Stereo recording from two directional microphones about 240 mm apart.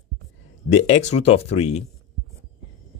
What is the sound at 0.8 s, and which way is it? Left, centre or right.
Speech, left.